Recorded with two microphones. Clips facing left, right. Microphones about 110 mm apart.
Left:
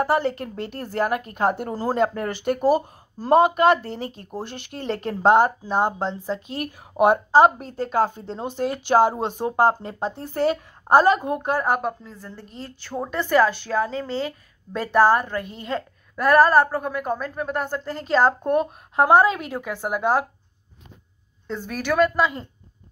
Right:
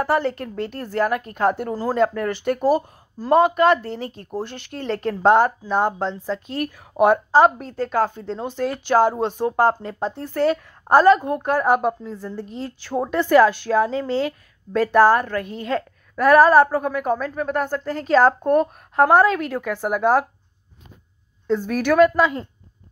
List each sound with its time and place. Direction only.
0.3 s a woman's voice: 15° left (ahead or behind)
11.7 s a woman's voice: 5° right (ahead or behind)
14.7 s a woman's voice: 5° left (ahead or behind)
21.5 s a woman's voice: 5° right (ahead or behind)